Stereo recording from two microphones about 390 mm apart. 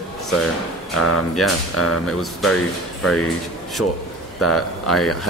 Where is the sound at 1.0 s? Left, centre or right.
Left.